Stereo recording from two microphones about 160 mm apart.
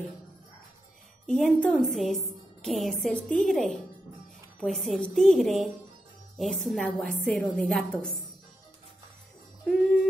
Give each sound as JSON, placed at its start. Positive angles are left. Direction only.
{"t": 1.2, "sound": "a woman's voice", "side_deg": 5}